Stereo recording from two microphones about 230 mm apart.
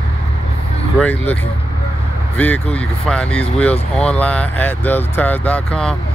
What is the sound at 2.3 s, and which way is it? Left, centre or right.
Speech, centre.